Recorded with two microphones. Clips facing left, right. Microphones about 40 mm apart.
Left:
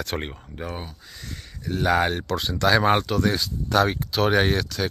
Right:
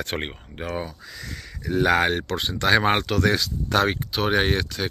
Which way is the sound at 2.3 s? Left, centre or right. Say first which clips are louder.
Left 1 dB; right.